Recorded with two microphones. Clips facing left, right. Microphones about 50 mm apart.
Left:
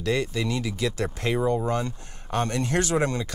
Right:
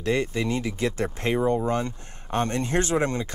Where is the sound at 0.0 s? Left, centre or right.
Right.